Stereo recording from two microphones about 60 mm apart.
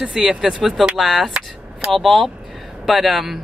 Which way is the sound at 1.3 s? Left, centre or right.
Centre.